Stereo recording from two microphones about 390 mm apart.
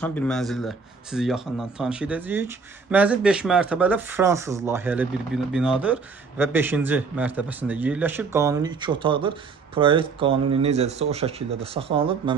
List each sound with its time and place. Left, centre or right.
0.0 s speech: centre